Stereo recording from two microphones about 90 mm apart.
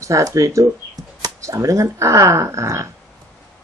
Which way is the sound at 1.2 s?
35° right (ahead or behind).